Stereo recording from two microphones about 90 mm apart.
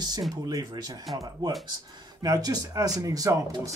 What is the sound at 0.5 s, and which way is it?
Speech, 45° right (ahead or behind).